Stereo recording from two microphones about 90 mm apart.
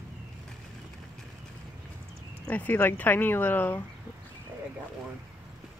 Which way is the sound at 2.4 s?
20° left (ahead or behind).